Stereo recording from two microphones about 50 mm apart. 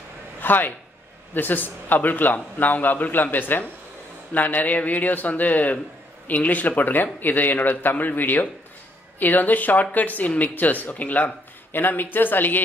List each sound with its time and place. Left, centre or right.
0.4 s a man's voice: left